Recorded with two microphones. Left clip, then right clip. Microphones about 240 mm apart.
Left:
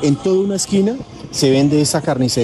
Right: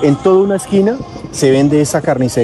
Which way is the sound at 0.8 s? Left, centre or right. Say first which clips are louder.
Right 5 dB; right.